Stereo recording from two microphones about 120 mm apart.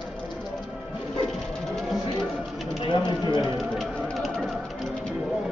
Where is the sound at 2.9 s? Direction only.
40° left (ahead or behind).